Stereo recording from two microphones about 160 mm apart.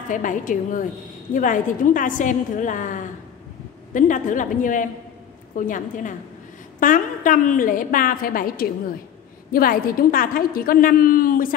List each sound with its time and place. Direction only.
0.1 s a woman's voice: 55° left (ahead or behind)